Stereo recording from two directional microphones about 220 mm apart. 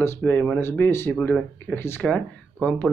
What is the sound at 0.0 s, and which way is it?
Speech, 10° left (ahead or behind).